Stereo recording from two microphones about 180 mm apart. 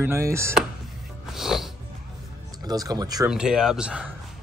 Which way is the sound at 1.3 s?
Centre (ahead or behind).